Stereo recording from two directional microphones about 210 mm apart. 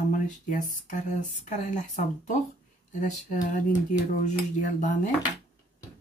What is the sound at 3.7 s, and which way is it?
Speech, 35° left (ahead or behind).